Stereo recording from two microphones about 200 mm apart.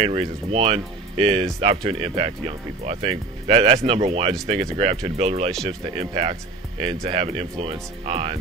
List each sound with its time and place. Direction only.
0.0 s speech: 30° right (ahead or behind)